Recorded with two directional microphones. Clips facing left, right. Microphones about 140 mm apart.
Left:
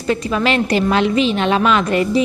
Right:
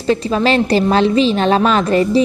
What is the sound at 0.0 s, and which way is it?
A woman's voice, 30° right (ahead or behind).